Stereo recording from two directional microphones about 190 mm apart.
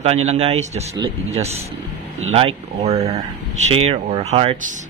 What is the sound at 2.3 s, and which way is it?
Speech, 30° right (ahead or behind).